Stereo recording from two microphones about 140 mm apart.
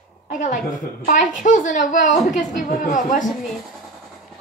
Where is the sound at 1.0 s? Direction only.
65° left (ahead or behind).